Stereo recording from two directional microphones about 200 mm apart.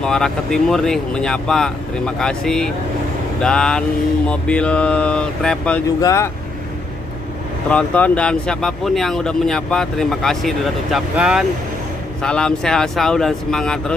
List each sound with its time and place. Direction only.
0.0 s speech: 5° left (ahead or behind)
5.9 s speech: 15° left (ahead or behind)
7.7 s speech: 5° left (ahead or behind)